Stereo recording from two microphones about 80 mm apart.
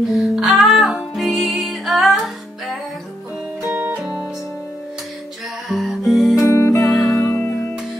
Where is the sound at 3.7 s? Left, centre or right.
Right.